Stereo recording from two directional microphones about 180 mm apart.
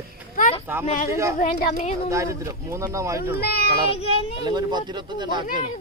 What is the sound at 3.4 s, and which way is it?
Speech, 60° left (ahead or behind).